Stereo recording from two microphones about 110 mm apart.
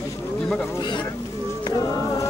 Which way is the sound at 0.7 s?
40° left (ahead or behind).